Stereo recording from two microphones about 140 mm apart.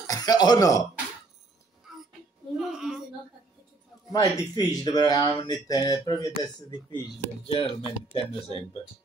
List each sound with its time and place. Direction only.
0.0 s speech: 25° left (ahead or behind)
2.5 s a sound: centre (ahead or behind)
4.1 s speech: 25° left (ahead or behind)
7.5 s speech: 45° left (ahead or behind)